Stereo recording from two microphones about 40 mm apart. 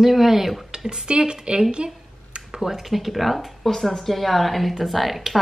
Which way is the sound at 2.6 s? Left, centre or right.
Centre.